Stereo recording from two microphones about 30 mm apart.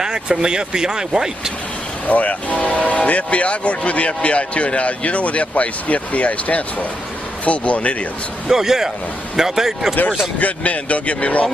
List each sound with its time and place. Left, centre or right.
0.0 s speech: right
2.0 s speech: left
8.5 s speech: centre
10.4 s speech: left